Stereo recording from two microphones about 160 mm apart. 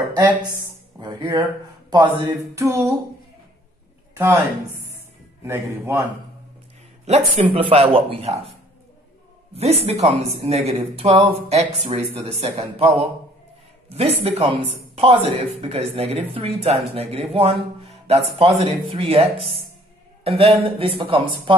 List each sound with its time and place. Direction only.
0.3 s speech: 10° right (ahead or behind)
0.9 s speech: 25° right (ahead or behind)
4.2 s speech: 10° right (ahead or behind)
7.1 s speech: 45° right (ahead or behind)
13.8 s speech: 40° right (ahead or behind)
20.2 s speech: 35° right (ahead or behind)